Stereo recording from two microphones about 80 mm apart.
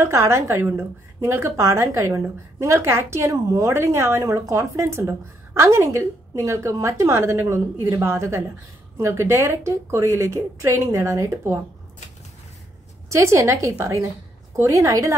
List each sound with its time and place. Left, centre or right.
0.0 s speech: right
13.1 s speech: right